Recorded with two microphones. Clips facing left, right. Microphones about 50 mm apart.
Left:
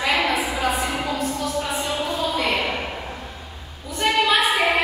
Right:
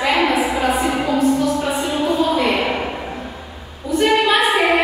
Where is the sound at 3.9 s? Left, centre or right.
Centre.